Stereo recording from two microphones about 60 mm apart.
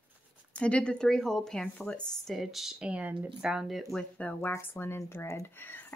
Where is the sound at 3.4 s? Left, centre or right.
Centre.